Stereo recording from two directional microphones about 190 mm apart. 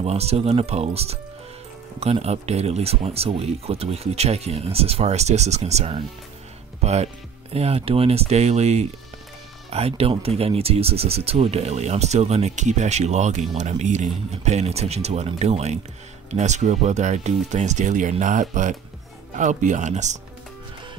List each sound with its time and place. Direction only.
0.0 s speech: 35° right (ahead or behind)